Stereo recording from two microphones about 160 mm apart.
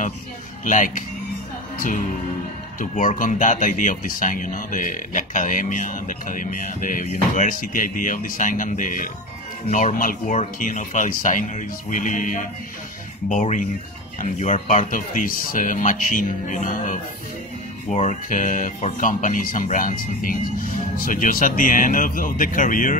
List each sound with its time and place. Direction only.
0.7 s speech: 55° left (ahead or behind)
2.8 s speech: 55° left (ahead or behind)